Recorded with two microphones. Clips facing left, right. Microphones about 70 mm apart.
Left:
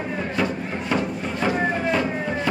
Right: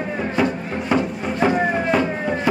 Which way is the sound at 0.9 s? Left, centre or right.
Centre.